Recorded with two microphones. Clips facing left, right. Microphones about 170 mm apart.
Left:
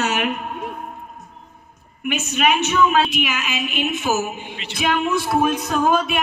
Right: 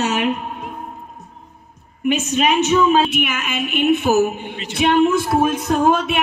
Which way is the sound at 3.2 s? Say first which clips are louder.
Right 2 dB; 55° right (ahead or behind).